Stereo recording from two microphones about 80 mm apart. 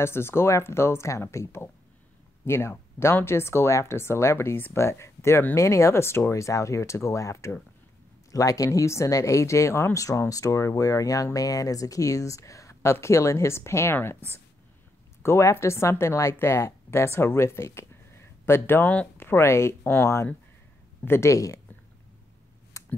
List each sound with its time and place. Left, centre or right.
0.0 s speech: left
15.2 s speech: left
21.3 s speech: left
22.8 s finger snapping: left